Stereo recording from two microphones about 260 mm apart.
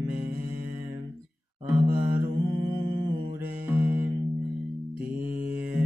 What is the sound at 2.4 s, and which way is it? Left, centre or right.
Music, centre.